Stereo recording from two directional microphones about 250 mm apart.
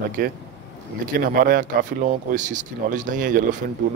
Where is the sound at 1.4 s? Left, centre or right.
Right.